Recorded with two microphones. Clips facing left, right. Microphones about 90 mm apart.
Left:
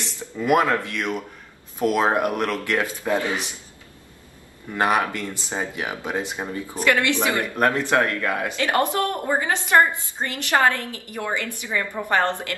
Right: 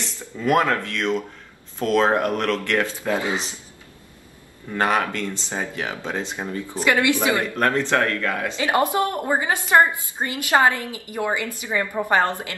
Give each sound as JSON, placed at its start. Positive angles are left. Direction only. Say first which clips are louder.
{"t": 0.4, "sound": "speech", "louder": "even", "side_deg": 10}
{"t": 4.7, "sound": "speech", "louder": "even", "side_deg": 10}
{"t": 6.8, "sound": "a woman's voice", "louder": "right 1 dB", "side_deg": -15}
{"t": 7.5, "sound": "speech", "louder": "even", "side_deg": 10}
{"t": 8.5, "sound": "a woman's voice", "louder": "right 2 dB", "side_deg": -15}